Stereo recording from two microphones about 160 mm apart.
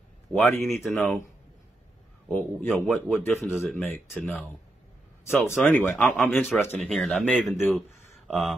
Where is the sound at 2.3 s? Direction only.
10° left (ahead or behind).